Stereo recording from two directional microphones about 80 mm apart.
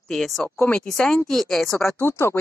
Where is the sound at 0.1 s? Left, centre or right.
Centre.